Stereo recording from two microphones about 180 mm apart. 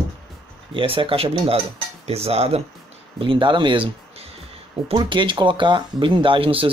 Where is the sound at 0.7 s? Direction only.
30° right (ahead or behind).